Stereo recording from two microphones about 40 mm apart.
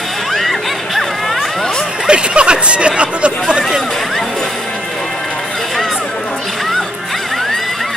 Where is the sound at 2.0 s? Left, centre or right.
Right.